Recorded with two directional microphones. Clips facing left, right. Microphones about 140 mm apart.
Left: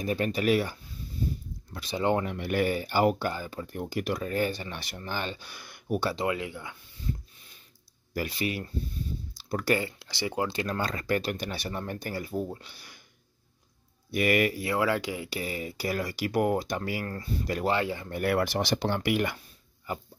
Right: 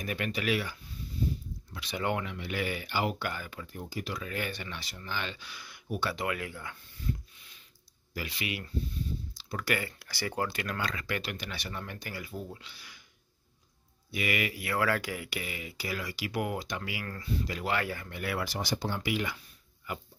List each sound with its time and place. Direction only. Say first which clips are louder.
0.0 s speech: left 6 dB; 35° left (ahead or behind)
2.0 s speech: left 6 dB; 30° left (ahead or behind)
2.2 s speech: left 7 dB; 50° left (ahead or behind); by 3.6 s 35° left (ahead or behind)
3.6 s speech: left 10 dB; 60° left (ahead or behind)
4.2 s speech: left 7 dB; 40° left (ahead or behind)
4.7 s speech: left 4 dB; 55° left (ahead or behind)
6.0 s speech: left 2 dB; 25° left (ahead or behind)
8.1 s speech: left 6 dB; 45° left (ahead or behind)
9.8 s speech: left 4 dB; 20° left (ahead or behind); by 13.0 s 45° left (ahead or behind)
14.1 s speech: left 8 dB; 45° left (ahead or behind)
14.7 s speech: left 3 dB; 20° left (ahead or behind)
15.3 s speech: left 6 dB; 40° left (ahead or behind)
17.6 s speech: left 5 dB; 25° left (ahead or behind)
18.1 s speech: left 10 dB; 55° left (ahead or behind)